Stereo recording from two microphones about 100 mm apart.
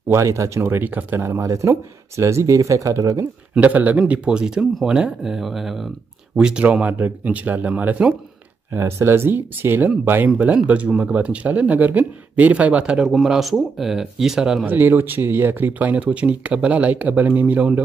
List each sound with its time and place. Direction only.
0.1 s speech: 30° right (ahead or behind)
3.5 s speech: 15° right (ahead or behind)
8.7 s speech: 25° right (ahead or behind); by 14.7 s 5° right (ahead or behind)
14.7 s speech: 20° right (ahead or behind)